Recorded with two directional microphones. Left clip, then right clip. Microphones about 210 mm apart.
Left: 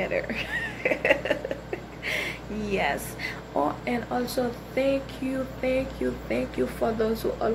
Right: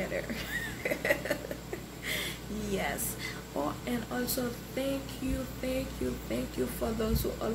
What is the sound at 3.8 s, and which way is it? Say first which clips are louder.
Speech: left 7 dB; 15° right (ahead or behind).